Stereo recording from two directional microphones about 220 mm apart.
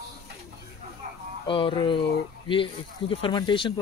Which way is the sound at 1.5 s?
20° left (ahead or behind).